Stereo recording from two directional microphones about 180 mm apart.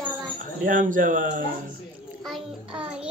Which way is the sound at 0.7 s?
50° right (ahead or behind).